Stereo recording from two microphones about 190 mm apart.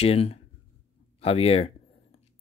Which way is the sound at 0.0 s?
30° left (ahead or behind).